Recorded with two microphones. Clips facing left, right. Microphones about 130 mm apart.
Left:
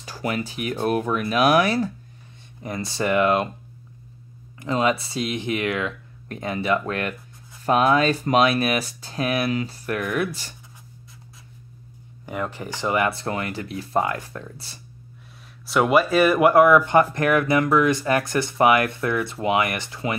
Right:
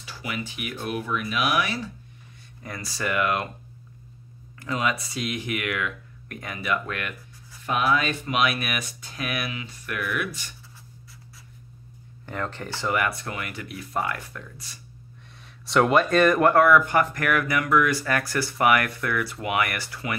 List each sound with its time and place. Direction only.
0.0 s speech: 45° left (ahead or behind)
2.6 s speech: 25° left (ahead or behind)
4.6 s speech: 30° left (ahead or behind)
12.3 s speech: 10° left (ahead or behind); by 14.8 s 30° left (ahead or behind)
15.4 s speech: 5° left (ahead or behind); by 20.2 s 20° left (ahead or behind)